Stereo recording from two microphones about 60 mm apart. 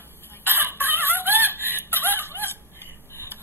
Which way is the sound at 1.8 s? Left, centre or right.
Left.